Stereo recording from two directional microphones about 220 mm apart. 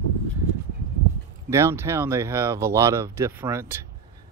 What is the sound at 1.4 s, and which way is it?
Speech, 10° right (ahead or behind).